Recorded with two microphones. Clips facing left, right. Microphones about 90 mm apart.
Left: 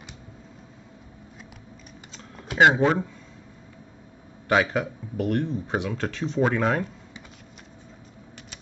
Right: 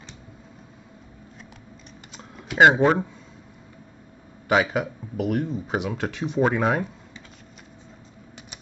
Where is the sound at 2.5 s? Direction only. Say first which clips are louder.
Right 2 dB; 15° right (ahead or behind).